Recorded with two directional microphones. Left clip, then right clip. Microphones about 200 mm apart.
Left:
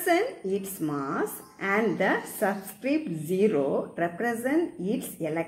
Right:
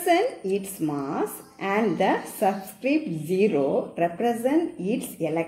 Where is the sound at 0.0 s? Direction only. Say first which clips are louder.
Right 3 dB; 15° right (ahead or behind).